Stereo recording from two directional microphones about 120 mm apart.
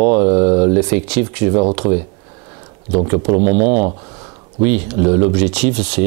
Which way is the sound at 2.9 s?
15° right (ahead or behind).